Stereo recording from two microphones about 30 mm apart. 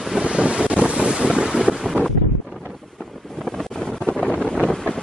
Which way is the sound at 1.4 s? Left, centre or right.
Centre.